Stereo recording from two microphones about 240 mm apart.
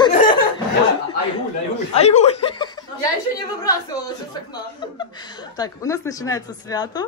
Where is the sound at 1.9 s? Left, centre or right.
Left.